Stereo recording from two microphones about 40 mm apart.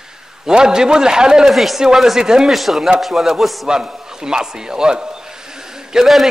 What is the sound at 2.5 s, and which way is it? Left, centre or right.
Speech, centre.